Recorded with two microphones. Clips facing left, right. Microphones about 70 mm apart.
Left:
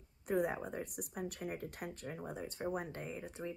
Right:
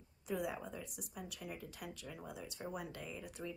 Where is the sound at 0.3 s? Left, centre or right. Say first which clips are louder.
Left 5 dB; left.